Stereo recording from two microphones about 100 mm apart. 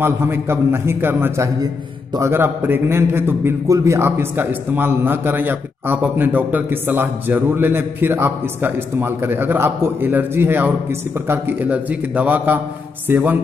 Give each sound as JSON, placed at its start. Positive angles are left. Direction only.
{"t": 0.0, "sound": "a man's voice", "side_deg": -25}